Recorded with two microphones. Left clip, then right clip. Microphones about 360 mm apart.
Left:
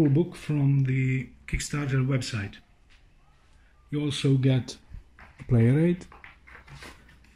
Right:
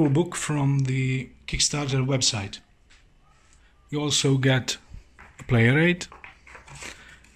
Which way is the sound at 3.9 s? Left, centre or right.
Centre.